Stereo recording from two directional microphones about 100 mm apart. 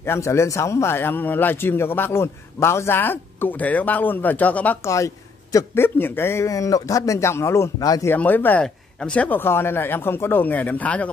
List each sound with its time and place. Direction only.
0.0 s a man's voice: 25° left (ahead or behind)
4.8 s a man's voice: 30° left (ahead or behind)
5.8 s a man's voice: 20° left (ahead or behind)